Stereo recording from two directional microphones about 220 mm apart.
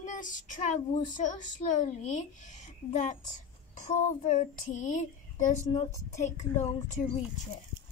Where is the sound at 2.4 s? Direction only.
35° left (ahead or behind).